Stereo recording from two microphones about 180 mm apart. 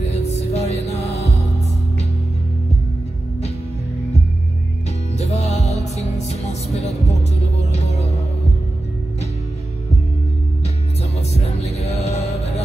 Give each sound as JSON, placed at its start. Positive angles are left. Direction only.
{"t": 0.0, "sound": "music", "side_deg": 35}
{"t": 5.1, "sound": "music", "side_deg": 40}
{"t": 11.1, "sound": "music", "side_deg": 35}